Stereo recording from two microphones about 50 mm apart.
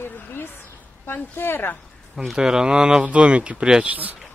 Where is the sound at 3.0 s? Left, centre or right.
Right.